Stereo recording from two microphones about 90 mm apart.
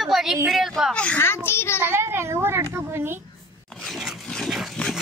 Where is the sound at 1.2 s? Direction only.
25° left (ahead or behind).